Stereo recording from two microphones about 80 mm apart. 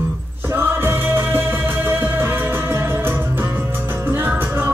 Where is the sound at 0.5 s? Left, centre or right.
Right.